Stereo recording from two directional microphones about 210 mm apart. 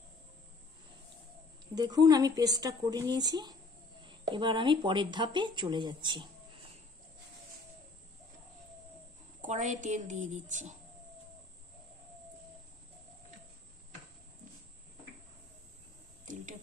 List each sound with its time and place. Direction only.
1.8 s a woman's voice: 20° right (ahead or behind)
9.4 s a woman's voice: 35° right (ahead or behind)
16.3 s a sound: 35° right (ahead or behind)